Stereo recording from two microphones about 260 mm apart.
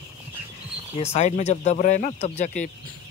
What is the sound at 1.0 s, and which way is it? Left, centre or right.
Speech, left.